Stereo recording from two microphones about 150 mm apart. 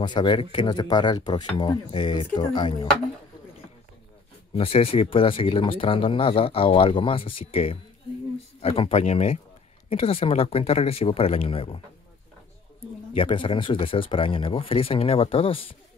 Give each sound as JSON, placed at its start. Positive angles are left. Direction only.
{"t": 0.0, "sound": "speech", "side_deg": 30}
{"t": 4.6, "sound": "speech", "side_deg": 40}
{"t": 13.1, "sound": "speech", "side_deg": 35}